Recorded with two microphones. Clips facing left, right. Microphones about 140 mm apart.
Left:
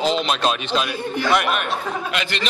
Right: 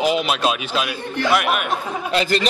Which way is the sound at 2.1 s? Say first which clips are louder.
Right 6 dB; 40° right (ahead or behind).